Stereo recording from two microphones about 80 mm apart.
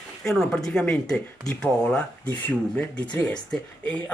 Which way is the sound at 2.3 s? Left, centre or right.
Left.